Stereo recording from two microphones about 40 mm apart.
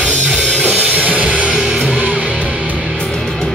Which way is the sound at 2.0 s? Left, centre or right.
Right.